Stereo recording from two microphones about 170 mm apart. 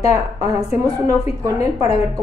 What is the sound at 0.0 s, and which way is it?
A woman's voice, 20° right (ahead or behind).